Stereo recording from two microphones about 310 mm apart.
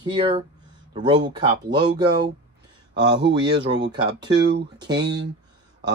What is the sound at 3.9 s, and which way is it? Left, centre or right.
Speech, centre.